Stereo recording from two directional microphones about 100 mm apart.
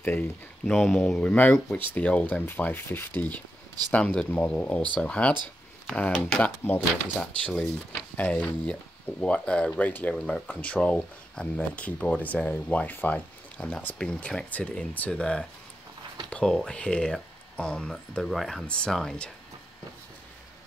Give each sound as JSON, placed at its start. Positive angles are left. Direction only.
{"t": 0.0, "sound": "speech", "side_deg": 20}
{"t": 0.7, "sound": "speech", "side_deg": 0}
{"t": 1.3, "sound": "speech", "side_deg": 15}